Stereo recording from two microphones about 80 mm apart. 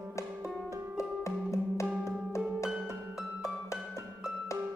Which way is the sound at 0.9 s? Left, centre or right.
Left.